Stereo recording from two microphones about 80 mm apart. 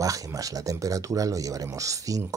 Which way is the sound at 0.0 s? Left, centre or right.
Right.